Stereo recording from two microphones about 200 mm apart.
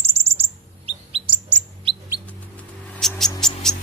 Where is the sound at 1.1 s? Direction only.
25° right (ahead or behind).